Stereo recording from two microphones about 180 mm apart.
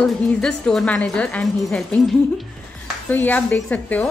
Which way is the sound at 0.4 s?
5° left (ahead or behind).